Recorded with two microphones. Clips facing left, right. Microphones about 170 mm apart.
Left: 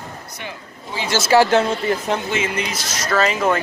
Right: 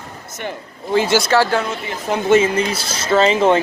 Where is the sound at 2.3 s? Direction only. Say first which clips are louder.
Right 8 dB; 35° right (ahead or behind).